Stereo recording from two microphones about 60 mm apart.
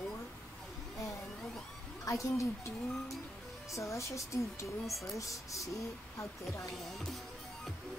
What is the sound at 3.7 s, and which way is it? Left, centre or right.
Speech, left.